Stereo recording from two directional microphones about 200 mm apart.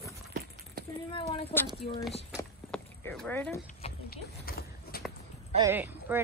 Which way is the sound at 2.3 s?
5° left (ahead or behind).